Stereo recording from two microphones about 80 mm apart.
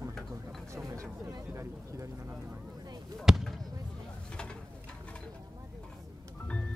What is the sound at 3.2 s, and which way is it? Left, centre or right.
Speech, centre.